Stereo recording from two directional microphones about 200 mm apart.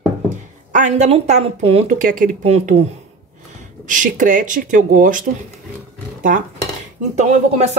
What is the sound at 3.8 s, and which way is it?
Speech, 40° right (ahead or behind).